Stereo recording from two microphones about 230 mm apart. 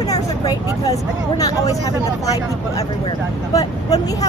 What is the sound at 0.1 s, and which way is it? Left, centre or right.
Vehicle, centre.